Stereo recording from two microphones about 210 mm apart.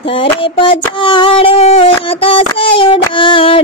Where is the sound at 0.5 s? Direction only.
25° left (ahead or behind).